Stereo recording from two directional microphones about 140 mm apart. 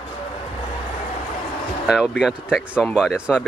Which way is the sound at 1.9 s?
5° right (ahead or behind).